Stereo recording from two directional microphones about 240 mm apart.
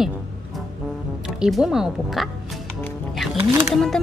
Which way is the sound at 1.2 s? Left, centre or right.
Centre.